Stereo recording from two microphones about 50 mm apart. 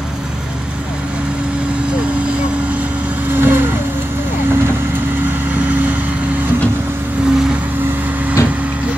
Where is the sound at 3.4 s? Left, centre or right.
Right.